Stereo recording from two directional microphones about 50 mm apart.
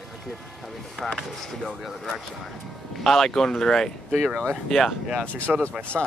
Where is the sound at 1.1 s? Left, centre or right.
Centre.